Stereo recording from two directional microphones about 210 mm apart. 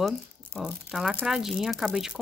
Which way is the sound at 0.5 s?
Centre (ahead or behind).